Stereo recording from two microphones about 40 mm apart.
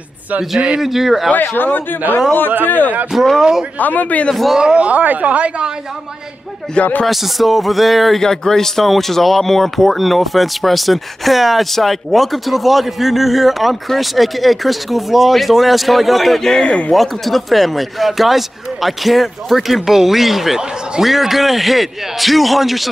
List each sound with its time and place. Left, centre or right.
0.7 s speech: centre
1.4 s speech: left
3.1 s speech: centre
3.8 s a man's voice: left
4.6 s speech: right
4.8 s speech: right
6.8 s speech: left
7.1 s speech: centre
8.2 s speech: centre
16.6 s speech: left
16.9 s speech: centre